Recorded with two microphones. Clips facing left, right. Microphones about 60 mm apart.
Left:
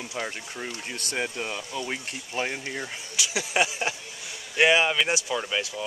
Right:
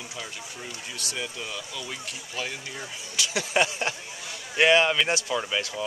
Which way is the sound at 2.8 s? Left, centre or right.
Centre.